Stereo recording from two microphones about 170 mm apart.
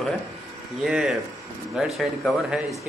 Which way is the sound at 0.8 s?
Centre (ahead or behind).